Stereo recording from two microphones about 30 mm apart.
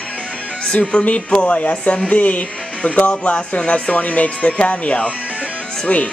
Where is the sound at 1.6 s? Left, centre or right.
Left.